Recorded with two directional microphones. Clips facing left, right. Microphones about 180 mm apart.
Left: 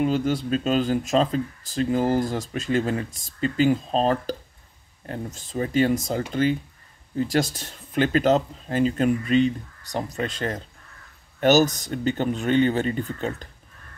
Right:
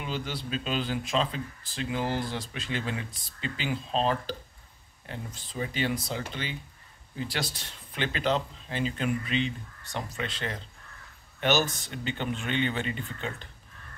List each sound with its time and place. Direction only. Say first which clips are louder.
0.0 s speech: left 12 dB; 45° left (ahead or behind)